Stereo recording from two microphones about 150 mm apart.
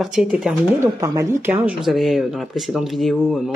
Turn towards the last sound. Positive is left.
turn(degrees=0)  # may be behind; listen again after turning